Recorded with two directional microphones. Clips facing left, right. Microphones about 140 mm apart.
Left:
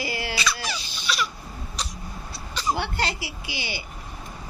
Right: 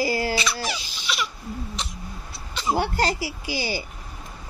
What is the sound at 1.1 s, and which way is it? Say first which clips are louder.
Crying: left 1 dB; 20° right (ahead or behind).